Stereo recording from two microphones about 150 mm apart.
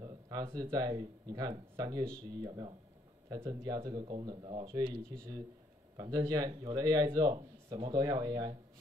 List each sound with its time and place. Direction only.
0.0 s a man's voice: 30° right (ahead or behind)
5.9 s a man's voice: 25° right (ahead or behind)